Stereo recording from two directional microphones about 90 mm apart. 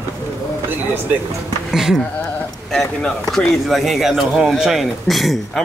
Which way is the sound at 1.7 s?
5° right (ahead or behind).